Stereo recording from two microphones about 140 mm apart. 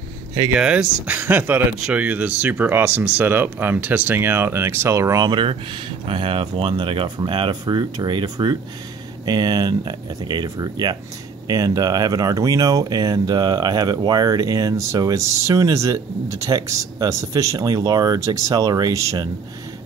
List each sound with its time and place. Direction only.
0.6 s speech: 5° right (ahead or behind); by 19.2 s 25° right (ahead or behind)